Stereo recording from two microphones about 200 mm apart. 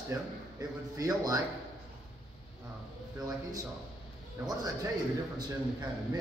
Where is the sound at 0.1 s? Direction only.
15° right (ahead or behind).